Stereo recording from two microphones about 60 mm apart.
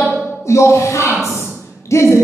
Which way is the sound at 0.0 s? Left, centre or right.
Centre.